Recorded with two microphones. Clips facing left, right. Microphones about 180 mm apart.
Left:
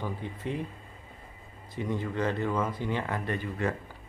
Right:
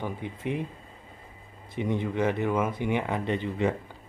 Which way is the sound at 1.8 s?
20° right (ahead or behind).